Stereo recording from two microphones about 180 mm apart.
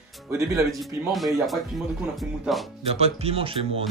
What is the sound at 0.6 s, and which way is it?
Speech, centre (ahead or behind).